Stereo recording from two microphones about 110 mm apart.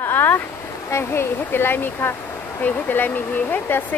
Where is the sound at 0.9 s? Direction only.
25° left (ahead or behind).